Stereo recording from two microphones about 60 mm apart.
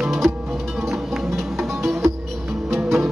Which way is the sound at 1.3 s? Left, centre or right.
Centre.